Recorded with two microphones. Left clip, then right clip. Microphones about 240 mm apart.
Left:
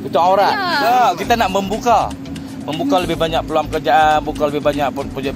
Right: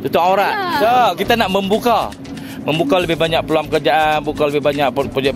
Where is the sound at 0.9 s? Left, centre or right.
Right.